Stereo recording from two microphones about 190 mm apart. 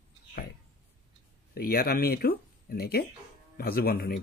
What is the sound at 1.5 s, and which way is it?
Speech, 55° left (ahead or behind).